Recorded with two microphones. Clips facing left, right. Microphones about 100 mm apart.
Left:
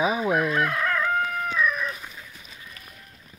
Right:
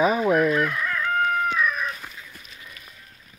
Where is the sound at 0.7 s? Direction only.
90° left.